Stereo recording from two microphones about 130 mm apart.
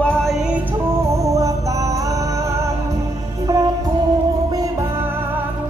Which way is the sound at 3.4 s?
25° right (ahead or behind).